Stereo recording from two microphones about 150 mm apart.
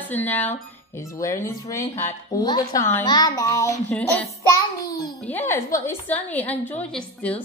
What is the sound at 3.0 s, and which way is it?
Speech, 30° left (ahead or behind).